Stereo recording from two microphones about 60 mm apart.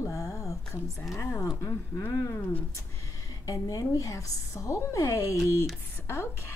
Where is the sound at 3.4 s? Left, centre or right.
Left.